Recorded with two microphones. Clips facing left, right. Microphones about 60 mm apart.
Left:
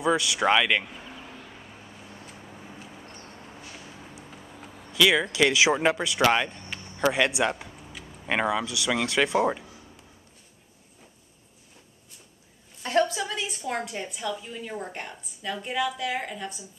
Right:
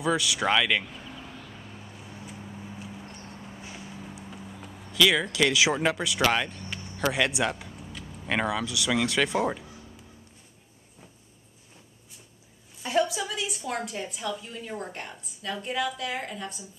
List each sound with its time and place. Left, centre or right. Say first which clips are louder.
0.0 s vehicle: left 2 dB; centre
2.0 s vehicle: right 2 dB; centre
2.3 s vehicle: right 3 dB; centre
4.2 s a sound: right 2 dB; centre
5.5 s speech: left 2 dB; left
7.7 s a sound: right 1 dB; centre
8.0 s vehicle: left 1 dB; centre
8.5 s speech: left 2 dB; centre
12.8 s a sound: left 2 dB; centre
13.2 s a woman's voice: left 1 dB; centre